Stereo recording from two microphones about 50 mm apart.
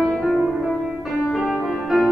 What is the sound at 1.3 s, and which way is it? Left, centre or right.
Music, centre.